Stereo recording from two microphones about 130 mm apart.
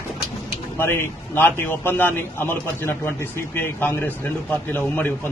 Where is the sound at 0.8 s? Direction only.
20° left (ahead or behind).